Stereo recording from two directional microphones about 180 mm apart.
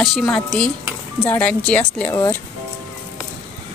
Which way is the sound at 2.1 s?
20° left (ahead or behind).